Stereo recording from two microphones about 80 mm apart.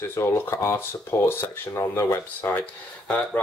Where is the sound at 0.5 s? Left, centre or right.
Left.